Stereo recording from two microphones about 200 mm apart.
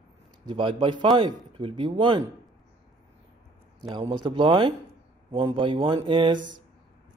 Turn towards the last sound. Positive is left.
turn(degrees=-25)  # may be behind; listen again after turning